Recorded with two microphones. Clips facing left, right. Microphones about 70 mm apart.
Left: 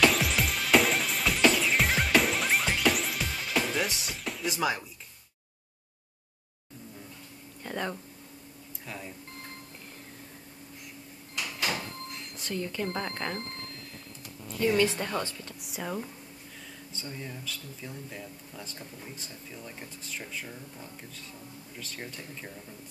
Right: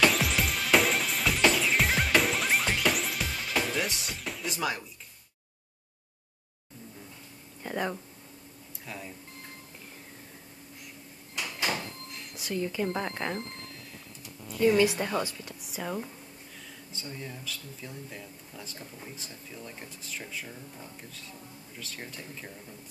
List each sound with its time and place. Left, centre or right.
0.0 s music: centre
7.6 s speech: centre
8.8 s speech: centre
11.3 s a sound: right
12.4 s speech: centre
14.5 s a sound: centre
14.8 s speech: centre
15.6 s speech: centre